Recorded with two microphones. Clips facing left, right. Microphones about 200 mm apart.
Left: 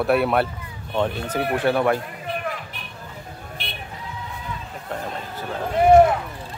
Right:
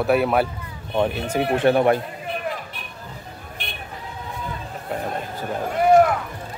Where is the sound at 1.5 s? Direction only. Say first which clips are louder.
Right 3 dB; 20° right (ahead or behind).